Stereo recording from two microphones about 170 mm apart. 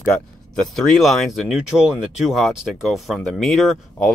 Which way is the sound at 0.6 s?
Centre (ahead or behind).